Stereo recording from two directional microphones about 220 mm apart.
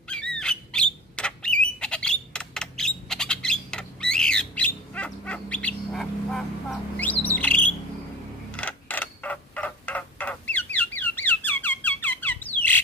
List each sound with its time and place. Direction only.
0.1 s bird: 5° left (ahead or behind)
8.5 s creak: 5° left (ahead or behind)